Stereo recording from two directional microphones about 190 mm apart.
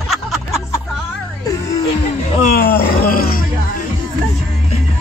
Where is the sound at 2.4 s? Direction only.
50° left (ahead or behind).